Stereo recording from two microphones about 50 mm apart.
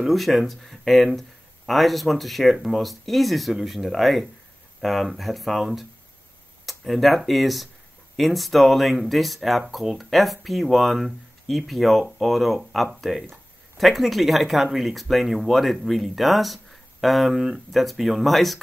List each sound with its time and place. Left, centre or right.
0.0 s speech: centre